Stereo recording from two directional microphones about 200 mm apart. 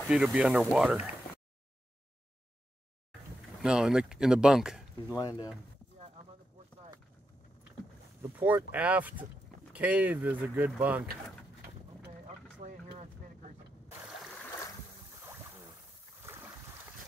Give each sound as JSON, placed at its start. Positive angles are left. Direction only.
{"t": 0.1, "sound": "speech", "side_deg": -5}
{"t": 3.6, "sound": "speech", "side_deg": -5}
{"t": 8.2, "sound": "speech", "side_deg": -10}
{"t": 12.5, "sound": "vehicle", "side_deg": -30}
{"t": 16.2, "sound": "boat", "side_deg": -10}